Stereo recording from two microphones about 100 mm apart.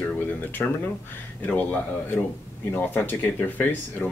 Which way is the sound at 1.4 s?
15° left (ahead or behind).